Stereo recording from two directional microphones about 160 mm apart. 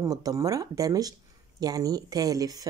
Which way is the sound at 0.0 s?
20° right (ahead or behind).